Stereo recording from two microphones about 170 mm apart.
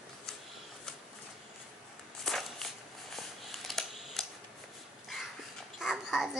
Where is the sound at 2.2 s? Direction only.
Centre (ahead or behind).